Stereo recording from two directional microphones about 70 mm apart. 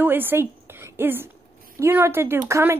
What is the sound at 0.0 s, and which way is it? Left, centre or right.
A woman's voice, right.